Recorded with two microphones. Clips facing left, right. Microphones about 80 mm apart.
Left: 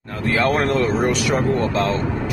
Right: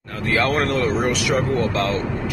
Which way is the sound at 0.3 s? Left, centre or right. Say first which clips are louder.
Left 1 dB; left.